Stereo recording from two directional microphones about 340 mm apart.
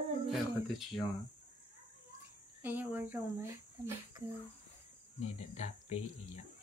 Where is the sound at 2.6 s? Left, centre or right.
Centre.